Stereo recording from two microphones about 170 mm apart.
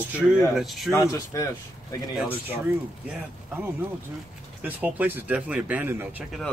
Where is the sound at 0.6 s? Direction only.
Centre (ahead or behind).